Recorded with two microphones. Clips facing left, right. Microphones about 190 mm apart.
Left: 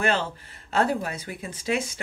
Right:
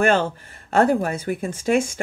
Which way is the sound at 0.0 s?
50° right (ahead or behind).